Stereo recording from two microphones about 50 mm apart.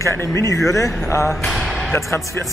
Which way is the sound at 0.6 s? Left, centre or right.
Left.